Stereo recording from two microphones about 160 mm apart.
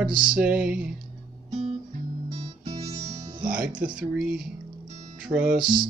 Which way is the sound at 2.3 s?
40° right (ahead or behind).